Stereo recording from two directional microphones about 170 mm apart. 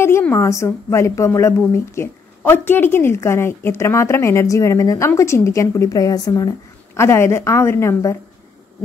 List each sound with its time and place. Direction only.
0.0 s a woman's voice: 15° left (ahead or behind)